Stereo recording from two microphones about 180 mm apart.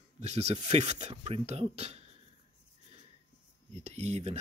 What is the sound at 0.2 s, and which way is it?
Speech, 35° right (ahead or behind).